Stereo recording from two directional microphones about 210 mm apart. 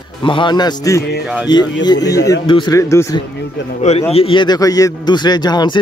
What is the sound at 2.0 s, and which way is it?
Speech, 15° left (ahead or behind).